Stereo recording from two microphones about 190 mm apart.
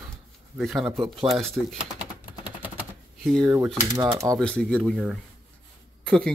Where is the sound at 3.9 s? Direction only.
20° right (ahead or behind).